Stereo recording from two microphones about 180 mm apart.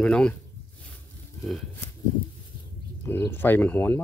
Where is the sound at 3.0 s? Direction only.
10° left (ahead or behind).